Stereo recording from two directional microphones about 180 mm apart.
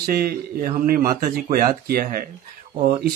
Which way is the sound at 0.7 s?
50° right (ahead or behind).